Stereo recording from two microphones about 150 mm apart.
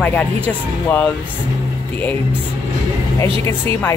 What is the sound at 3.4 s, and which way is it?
Speech, 15° left (ahead or behind).